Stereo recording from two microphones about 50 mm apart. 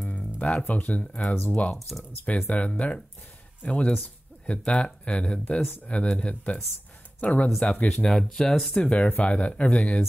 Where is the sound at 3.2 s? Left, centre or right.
Left.